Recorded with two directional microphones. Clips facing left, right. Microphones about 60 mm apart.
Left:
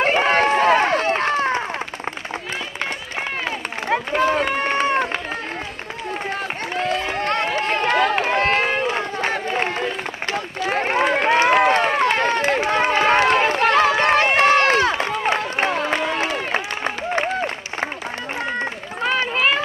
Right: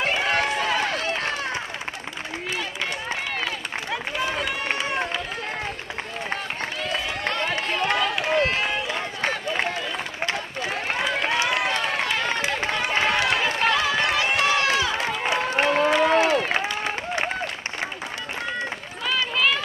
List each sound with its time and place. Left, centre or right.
0.0 s run: left
3.4 s run: left
6.8 s run: left
16.5 s applause: left
18.6 s run: left